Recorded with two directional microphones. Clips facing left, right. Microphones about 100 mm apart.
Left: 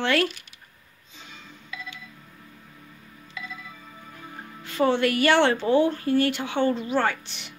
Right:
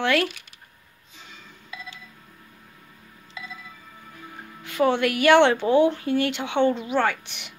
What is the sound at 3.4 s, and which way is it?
Music, 25° right (ahead or behind).